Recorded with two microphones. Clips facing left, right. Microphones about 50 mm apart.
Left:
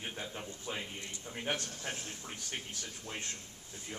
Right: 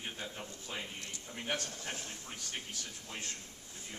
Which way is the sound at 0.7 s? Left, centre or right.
Left.